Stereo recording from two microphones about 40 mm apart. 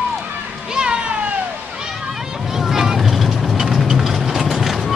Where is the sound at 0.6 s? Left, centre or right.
Right.